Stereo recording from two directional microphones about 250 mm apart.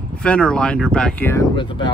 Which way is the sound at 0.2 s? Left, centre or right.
Centre.